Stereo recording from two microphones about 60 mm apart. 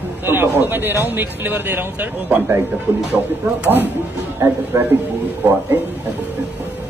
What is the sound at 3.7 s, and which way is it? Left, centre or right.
Speech, right.